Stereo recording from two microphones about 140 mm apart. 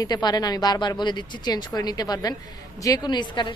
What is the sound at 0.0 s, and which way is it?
Speech, 30° left (ahead or behind).